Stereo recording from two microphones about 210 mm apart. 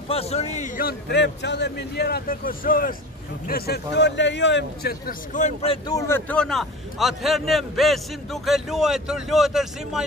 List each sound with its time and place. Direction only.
0.1 s a man's voice: 30° left (ahead or behind)
5.9 s a man's voice: 10° left (ahead or behind)